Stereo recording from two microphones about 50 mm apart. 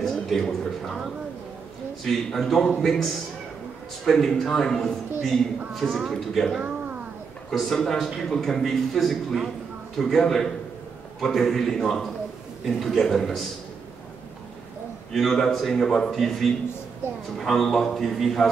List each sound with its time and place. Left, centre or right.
0.0 s speech: centre
2.0 s a man's voice: centre
7.5 s a man's voice: centre
15.1 s a man's voice: centre